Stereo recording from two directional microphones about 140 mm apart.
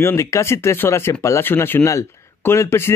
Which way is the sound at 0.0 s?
20° left (ahead or behind).